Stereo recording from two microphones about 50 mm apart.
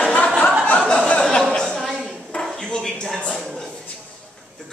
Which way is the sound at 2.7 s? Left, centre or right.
Centre.